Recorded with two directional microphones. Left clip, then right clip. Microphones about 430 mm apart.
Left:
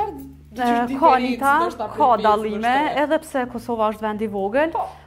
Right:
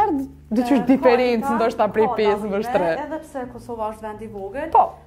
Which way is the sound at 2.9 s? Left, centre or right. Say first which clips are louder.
Left 8 dB; left.